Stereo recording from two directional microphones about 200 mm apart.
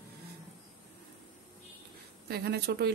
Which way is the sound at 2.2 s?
55° right (ahead or behind).